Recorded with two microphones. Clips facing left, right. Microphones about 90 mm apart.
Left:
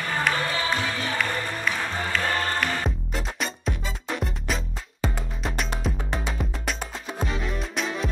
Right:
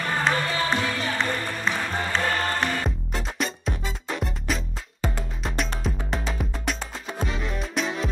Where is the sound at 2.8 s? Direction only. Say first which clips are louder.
Even; centre (ahead or behind).